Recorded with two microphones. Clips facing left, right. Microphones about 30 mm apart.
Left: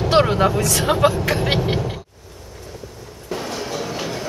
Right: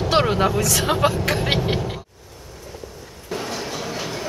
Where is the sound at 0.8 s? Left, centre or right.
Centre.